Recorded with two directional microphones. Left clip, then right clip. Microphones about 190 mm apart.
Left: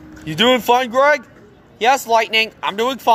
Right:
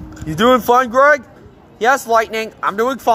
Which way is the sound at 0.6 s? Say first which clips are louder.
Right 3 dB; 15° right (ahead or behind).